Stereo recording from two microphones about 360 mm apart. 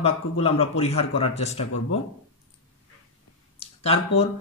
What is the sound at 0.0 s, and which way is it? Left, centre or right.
A man's voice, centre.